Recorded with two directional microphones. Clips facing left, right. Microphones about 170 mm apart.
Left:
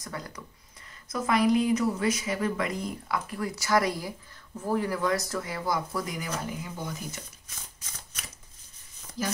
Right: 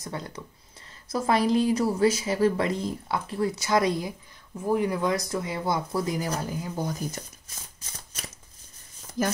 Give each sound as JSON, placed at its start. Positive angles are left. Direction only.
{"t": 0.0, "sound": "a woman's voice", "side_deg": -25}